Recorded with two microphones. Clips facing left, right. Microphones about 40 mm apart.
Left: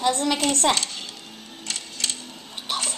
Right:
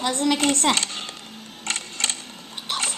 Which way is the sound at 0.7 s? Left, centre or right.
Right.